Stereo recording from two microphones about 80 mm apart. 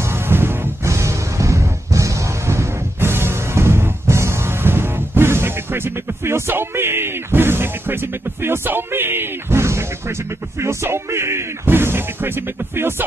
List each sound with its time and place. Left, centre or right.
0.1 s music: right